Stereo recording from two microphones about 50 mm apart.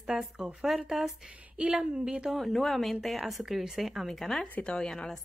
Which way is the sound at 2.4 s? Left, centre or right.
Centre.